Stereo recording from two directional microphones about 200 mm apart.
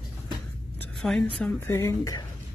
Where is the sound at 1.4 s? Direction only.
15° left (ahead or behind).